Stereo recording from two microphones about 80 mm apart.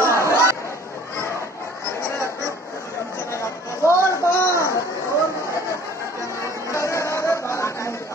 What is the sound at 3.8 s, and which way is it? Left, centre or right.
Music, left.